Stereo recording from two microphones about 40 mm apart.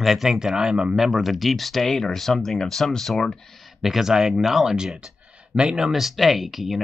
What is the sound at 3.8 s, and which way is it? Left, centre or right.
Speech, centre.